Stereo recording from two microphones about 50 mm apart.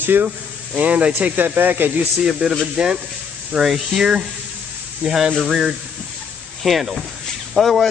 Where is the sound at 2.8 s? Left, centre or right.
Centre.